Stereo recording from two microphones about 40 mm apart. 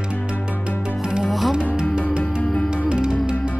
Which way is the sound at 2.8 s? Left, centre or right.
Right.